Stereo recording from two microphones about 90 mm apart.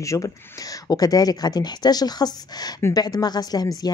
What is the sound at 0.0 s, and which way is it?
A woman's voice, 35° left (ahead or behind).